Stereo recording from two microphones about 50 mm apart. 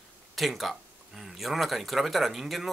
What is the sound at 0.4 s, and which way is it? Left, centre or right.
Speech, centre.